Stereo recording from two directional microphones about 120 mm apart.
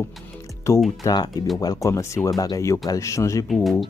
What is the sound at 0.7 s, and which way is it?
Speech, 25° left (ahead or behind).